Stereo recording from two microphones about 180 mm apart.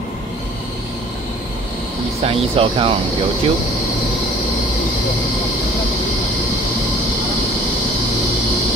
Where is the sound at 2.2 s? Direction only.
30° right (ahead or behind).